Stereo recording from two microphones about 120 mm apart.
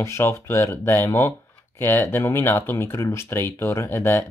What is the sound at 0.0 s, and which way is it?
Speech, 20° left (ahead or behind).